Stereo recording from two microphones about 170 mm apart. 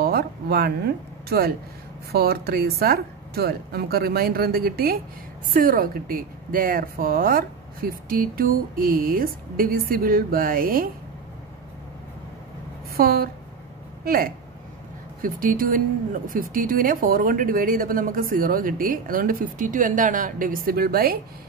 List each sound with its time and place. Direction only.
0.0 s speech: 65° right (ahead or behind)
12.9 s a woman's voice: 60° right (ahead or behind)